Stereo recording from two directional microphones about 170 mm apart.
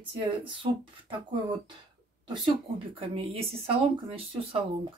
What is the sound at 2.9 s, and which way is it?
Speech, 35° right (ahead or behind).